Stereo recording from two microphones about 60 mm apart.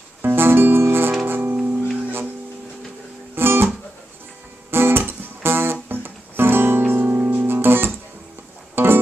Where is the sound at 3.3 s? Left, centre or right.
Right.